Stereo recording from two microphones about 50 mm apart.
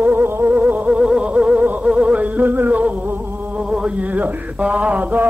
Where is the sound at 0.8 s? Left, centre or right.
Centre; by 2.9 s right.